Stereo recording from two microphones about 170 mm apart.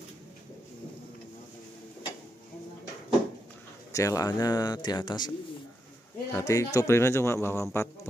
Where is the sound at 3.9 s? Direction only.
20° left (ahead or behind).